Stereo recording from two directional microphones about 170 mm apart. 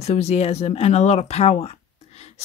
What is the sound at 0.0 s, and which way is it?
Speech, 40° left (ahead or behind).